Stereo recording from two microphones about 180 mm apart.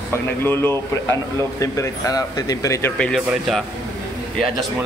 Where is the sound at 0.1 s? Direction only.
10° left (ahead or behind).